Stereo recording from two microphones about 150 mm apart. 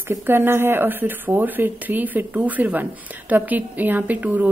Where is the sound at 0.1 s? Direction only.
15° right (ahead or behind).